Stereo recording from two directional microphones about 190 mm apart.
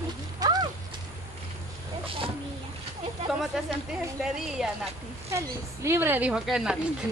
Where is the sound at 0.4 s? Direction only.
20° right (ahead or behind).